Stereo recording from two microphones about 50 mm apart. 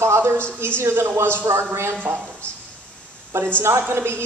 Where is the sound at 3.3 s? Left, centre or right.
Right.